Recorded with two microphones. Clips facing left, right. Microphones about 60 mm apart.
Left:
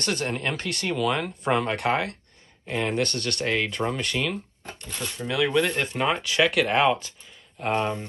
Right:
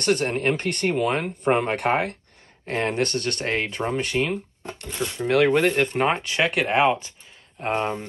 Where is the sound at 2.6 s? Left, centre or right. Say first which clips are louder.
Right 2 dB; right.